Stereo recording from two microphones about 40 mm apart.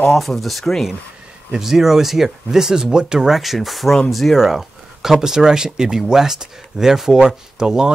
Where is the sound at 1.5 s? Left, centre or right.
Centre.